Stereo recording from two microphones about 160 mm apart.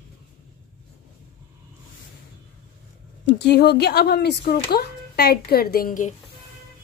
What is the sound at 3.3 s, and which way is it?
Speech, 90° left.